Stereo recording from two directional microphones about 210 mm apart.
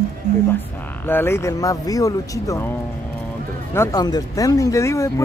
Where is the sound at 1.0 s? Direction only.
10° left (ahead or behind).